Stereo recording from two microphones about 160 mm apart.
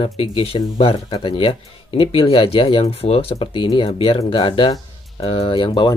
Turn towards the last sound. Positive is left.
turn(degrees=30)  # may be behind; listen again after turning